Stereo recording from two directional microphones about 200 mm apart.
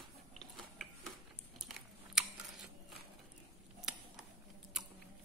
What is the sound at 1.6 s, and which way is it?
Biting, 5° right (ahead or behind).